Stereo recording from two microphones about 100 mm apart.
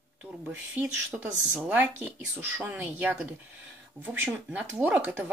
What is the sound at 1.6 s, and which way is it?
Speech, 20° right (ahead or behind).